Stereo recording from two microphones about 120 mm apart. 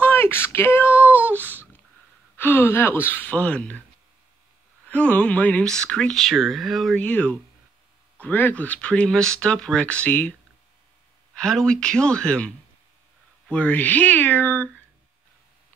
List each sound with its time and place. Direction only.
0.0 s child singing: 20° left (ahead or behind)
2.3 s speech: 15° left (ahead or behind)
4.8 s speech: 10° left (ahead or behind)
7.0 s speech: 10° left (ahead or behind)
11.3 s speech: 5° left (ahead or behind)